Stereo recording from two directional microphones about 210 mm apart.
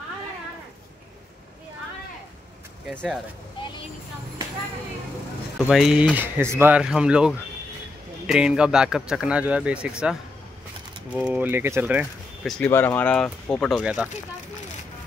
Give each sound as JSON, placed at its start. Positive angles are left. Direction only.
{"t": 2.9, "sound": "speech", "side_deg": 5}
{"t": 5.6, "sound": "speech", "side_deg": 0}
{"t": 11.1, "sound": "speech", "side_deg": -5}
{"t": 12.4, "sound": "speech", "side_deg": 5}